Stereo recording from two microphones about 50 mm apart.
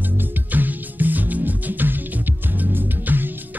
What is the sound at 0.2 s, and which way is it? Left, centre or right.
Music, right.